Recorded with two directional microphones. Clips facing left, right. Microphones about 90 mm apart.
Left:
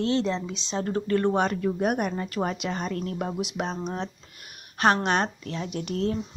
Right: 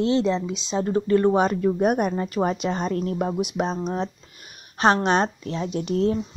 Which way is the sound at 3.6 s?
15° right (ahead or behind).